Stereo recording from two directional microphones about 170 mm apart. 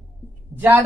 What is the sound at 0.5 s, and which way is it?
Speech, 10° right (ahead or behind).